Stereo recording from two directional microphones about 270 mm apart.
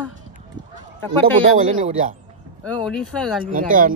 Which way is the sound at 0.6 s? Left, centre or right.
Right.